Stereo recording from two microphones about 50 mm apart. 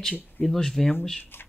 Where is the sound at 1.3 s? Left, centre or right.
Left.